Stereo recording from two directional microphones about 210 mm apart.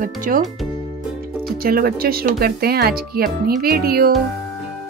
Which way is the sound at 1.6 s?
45° right (ahead or behind).